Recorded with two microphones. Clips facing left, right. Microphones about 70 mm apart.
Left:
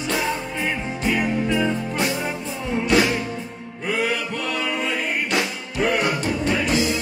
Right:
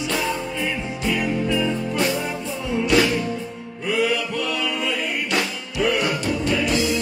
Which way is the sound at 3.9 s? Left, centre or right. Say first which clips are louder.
Right 2 dB; left.